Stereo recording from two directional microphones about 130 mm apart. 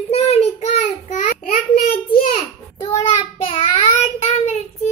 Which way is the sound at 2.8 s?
30° left (ahead or behind).